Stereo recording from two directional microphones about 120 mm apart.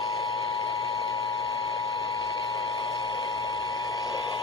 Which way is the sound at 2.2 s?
45° left (ahead or behind).